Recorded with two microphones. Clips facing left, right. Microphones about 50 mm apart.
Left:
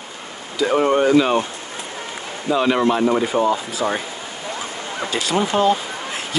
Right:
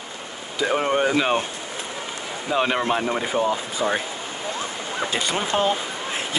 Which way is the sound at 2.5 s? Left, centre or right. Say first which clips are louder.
Left 4 dB; centre.